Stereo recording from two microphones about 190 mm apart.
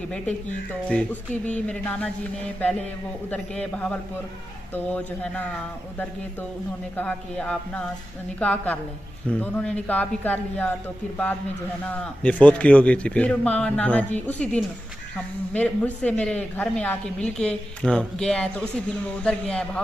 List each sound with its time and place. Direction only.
0.8 s speech: 5° left (ahead or behind)
7.0 s speech: 5° left (ahead or behind)
12.0 s a woman's voice: 5° left (ahead or behind)